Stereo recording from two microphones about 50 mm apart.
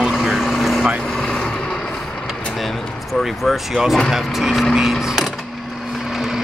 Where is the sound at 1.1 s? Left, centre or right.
Centre.